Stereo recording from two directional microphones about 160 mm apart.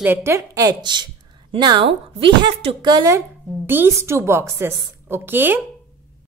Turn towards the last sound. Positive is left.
turn(degrees=-10)  # may be behind; listen again after turning